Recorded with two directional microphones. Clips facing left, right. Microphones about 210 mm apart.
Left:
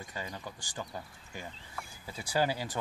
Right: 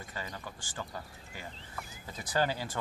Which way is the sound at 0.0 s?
15° left (ahead or behind).